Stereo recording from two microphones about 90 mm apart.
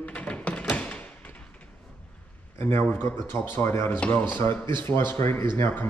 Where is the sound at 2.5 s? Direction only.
30° left (ahead or behind).